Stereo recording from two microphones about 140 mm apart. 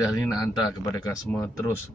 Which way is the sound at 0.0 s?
25° left (ahead or behind).